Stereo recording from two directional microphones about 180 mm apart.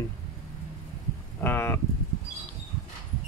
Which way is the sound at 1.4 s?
10° left (ahead or behind).